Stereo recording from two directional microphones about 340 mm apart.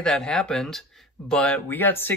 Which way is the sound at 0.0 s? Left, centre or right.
Centre.